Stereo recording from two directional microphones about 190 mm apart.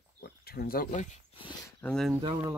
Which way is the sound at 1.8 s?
5° left (ahead or behind).